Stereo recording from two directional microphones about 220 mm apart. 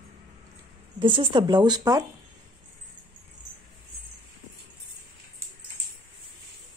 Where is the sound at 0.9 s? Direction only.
20° right (ahead or behind).